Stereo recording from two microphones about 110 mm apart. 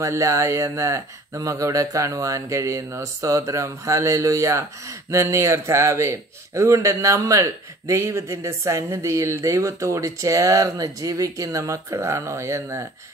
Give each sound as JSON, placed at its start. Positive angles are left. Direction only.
{"t": 0.0, "sound": "a man's voice", "side_deg": -30}